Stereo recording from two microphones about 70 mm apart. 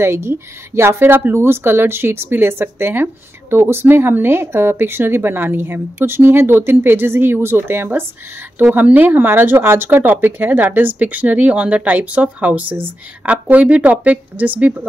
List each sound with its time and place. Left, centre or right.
0.0 s speech: right
8.5 s a woman's voice: right